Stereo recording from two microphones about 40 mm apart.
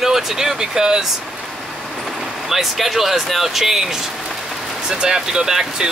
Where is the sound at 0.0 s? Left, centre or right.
Centre.